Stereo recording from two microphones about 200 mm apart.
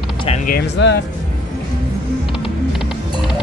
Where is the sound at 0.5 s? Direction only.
55° left (ahead or behind).